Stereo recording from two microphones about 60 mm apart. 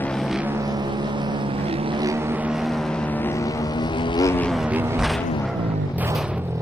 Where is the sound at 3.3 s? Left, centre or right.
Left.